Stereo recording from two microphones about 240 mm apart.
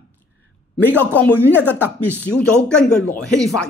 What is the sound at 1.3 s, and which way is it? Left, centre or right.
Speech, centre.